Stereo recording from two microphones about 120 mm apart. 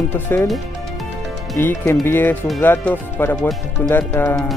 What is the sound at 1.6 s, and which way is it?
Speech, 20° left (ahead or behind).